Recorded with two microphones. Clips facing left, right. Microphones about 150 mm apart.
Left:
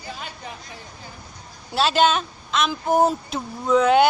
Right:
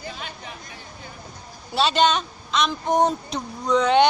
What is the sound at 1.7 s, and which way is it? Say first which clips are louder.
A woman's voice: left 1 dB; centre (ahead or behind).